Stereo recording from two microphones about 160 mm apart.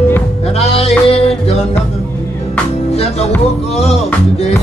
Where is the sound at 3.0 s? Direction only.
40° left (ahead or behind).